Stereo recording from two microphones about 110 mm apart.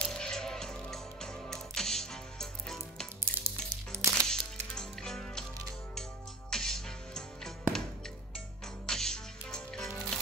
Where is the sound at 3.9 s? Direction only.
25° right (ahead or behind).